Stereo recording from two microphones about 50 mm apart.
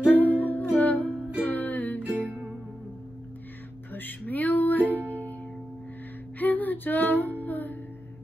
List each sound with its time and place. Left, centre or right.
0.1 s music: left
2.0 s music: right
3.9 s music: left
6.4 s music: left